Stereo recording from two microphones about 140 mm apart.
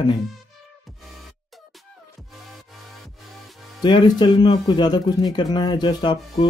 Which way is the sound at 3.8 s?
30° left (ahead or behind).